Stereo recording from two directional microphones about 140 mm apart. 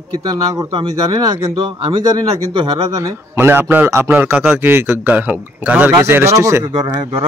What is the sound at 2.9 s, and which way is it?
A man's voice, 20° right (ahead or behind).